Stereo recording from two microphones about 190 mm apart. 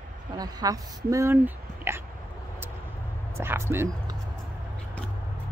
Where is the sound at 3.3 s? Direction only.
15° right (ahead or behind).